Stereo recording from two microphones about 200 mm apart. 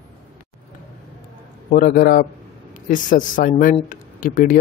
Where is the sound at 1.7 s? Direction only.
45° left (ahead or behind).